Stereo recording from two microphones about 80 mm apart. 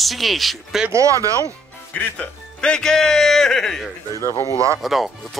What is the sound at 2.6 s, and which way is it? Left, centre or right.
Speech, centre.